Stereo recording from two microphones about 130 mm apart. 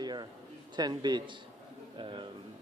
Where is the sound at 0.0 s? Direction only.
35° right (ahead or behind).